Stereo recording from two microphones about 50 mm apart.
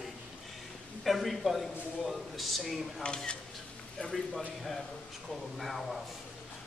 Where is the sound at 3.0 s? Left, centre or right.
Left.